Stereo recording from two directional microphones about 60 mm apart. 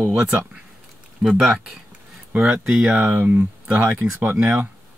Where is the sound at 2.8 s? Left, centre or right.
Right.